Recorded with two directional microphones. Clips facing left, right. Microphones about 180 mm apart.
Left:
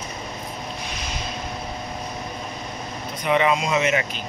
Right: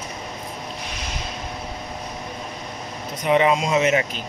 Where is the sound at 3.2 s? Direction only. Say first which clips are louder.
Right 2 dB; 30° right (ahead or behind).